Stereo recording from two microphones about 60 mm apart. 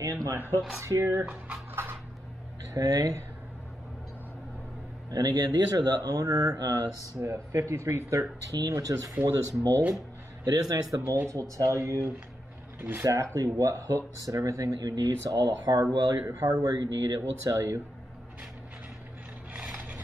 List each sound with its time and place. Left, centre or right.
0.0 s a man's voice: right
0.7 s speech: right
1.2 s speech: centre
2.7 s a man's voice: right
5.1 s speech: right
7.5 s speech: right
9.2 s a man's voice: right
11.2 s speech: right
13.0 s a man's voice: right
16.3 s speech: right
16.6 s speech: right
17.2 s speech: right
19.5 s a sound: centre